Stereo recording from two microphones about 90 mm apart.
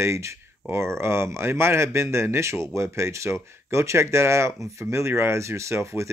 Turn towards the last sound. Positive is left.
turn(degrees=-30)  # may be behind; listen again after turning